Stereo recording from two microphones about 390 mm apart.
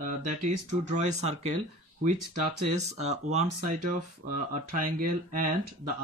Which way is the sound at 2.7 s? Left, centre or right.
Centre.